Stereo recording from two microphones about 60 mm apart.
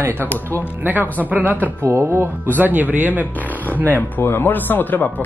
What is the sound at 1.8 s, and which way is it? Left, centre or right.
Speech, right.